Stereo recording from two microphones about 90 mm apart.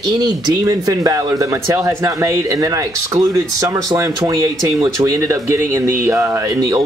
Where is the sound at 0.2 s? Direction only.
45° right (ahead or behind).